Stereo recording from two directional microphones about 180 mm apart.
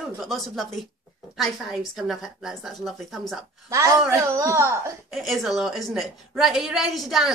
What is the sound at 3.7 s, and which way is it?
A child's voice, 20° right (ahead or behind).